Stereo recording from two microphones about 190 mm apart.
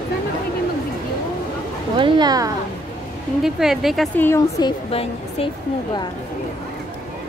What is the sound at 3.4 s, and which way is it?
Speech, centre (ahead or behind).